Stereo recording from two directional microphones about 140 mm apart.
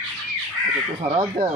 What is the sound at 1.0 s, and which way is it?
Speech, 35° right (ahead or behind).